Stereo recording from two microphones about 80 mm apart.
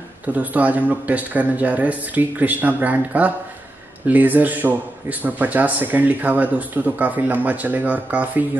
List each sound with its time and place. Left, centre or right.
0.3 s speech: right